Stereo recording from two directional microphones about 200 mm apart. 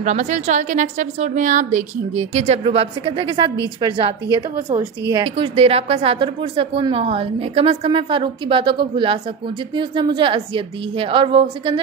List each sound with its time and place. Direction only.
0.0 s a woman's voice: 35° right (ahead or behind)